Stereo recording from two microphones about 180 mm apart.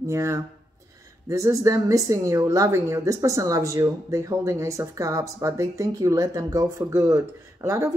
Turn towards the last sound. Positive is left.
turn(degrees=-15)  # may be behind; listen again after turning